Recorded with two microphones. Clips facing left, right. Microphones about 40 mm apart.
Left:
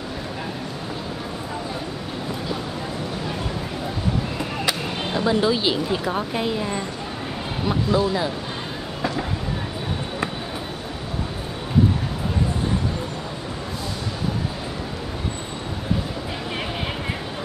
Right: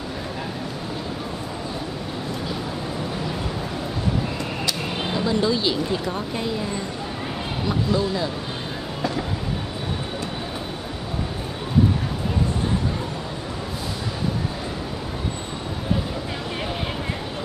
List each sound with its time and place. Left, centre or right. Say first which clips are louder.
5.1 s speech: left 2 dB; centre